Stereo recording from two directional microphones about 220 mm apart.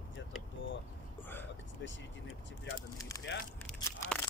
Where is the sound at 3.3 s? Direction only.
50° left (ahead or behind).